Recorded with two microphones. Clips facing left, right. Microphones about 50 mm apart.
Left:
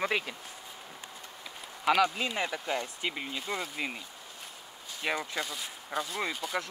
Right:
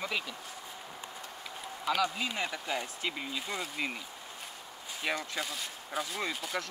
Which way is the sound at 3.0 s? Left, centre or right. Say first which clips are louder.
Left 1 dB; left.